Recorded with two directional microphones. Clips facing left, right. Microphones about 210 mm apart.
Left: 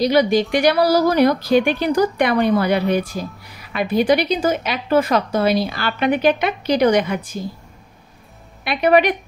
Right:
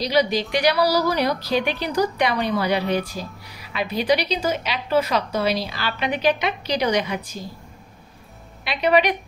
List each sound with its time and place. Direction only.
0.0 s a woman's voice: 50° left (ahead or behind)
8.6 s a woman's voice: 50° left (ahead or behind)